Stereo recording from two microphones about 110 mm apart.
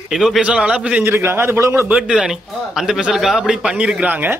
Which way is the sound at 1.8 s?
10° right (ahead or behind).